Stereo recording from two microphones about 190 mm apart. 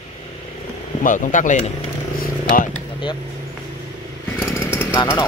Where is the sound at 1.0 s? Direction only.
40° left (ahead or behind).